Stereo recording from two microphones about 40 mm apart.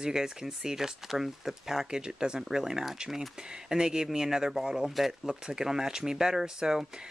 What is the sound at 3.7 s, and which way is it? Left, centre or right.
Speech, centre.